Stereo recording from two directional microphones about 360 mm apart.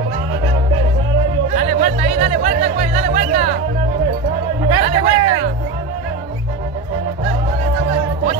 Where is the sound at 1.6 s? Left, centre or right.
Centre.